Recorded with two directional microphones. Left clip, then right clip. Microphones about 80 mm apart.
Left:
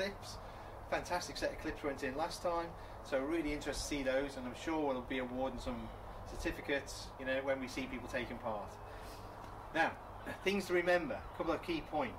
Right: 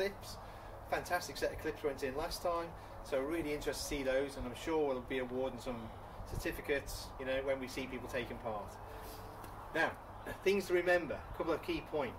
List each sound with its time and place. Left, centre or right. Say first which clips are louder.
0.8 s speech: right 1 dB; left
9.8 s speech: left 1 dB; left